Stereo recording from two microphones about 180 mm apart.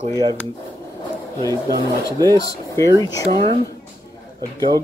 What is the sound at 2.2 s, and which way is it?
Speech, 20° left (ahead or behind).